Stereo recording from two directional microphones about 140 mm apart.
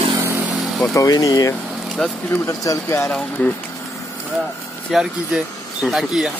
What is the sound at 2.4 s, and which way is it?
Speech, 25° left (ahead or behind).